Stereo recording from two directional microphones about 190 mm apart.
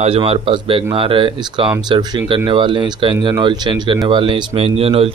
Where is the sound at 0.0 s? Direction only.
30° right (ahead or behind).